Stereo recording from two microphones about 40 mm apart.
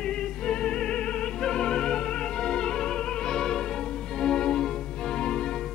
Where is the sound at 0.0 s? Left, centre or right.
Left.